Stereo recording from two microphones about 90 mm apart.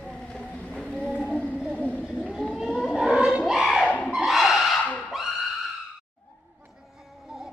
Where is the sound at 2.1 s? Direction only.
10° right (ahead or behind).